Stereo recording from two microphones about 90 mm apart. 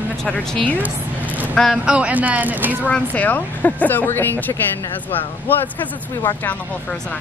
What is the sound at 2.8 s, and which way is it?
A woman's voice, 15° left (ahead or behind).